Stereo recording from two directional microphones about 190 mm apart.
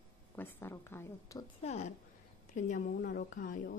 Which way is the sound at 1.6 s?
35° left (ahead or behind).